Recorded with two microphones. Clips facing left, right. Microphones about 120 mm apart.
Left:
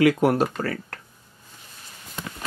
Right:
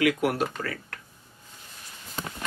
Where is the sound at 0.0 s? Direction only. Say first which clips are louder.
Left 6 dB; 35° left (ahead or behind).